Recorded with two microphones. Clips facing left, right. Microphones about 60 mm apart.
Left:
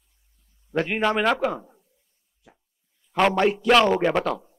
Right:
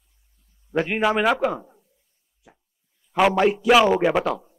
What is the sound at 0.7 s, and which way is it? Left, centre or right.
A man's voice, centre.